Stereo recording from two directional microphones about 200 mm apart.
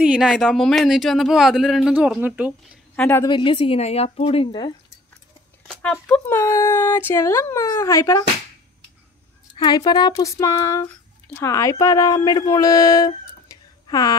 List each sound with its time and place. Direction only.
0.0 s speech: 5° right (ahead or behind)
3.0 s speech: 10° left (ahead or behind)
3.3 s a woman's voice: 25° left (ahead or behind)
5.7 s speech: 5° left (ahead or behind)
9.6 s a woman's voice: 20° left (ahead or behind)